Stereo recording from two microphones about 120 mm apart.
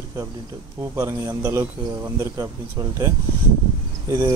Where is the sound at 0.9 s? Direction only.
25° right (ahead or behind).